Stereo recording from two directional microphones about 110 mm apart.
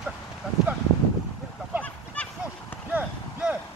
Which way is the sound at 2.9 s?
15° right (ahead or behind).